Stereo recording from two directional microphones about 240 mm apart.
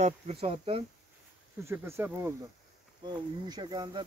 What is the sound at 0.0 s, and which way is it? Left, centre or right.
Speech, right.